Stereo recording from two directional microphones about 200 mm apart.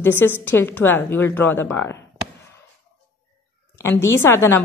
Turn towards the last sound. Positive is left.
turn(degrees=10)  # may be behind; listen again after turning